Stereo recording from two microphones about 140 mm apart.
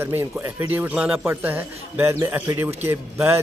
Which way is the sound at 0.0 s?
15° right (ahead or behind).